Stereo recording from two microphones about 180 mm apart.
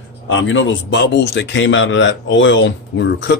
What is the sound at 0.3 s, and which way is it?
A man's voice, 90° left.